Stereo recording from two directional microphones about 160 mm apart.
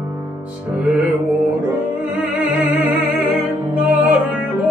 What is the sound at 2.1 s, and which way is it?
Music, 10° right (ahead or behind).